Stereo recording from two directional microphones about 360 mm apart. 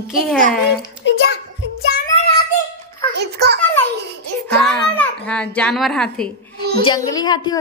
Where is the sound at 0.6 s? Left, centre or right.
Left.